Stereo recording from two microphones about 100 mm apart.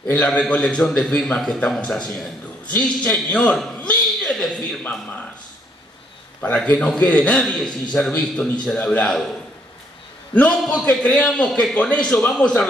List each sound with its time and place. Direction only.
0.1 s a man's voice: 10° left (ahead or behind)
6.4 s a man's voice: 15° left (ahead or behind)
10.3 s a man's voice: 10° left (ahead or behind)